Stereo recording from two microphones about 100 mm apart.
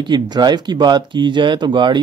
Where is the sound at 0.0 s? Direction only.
45° right (ahead or behind).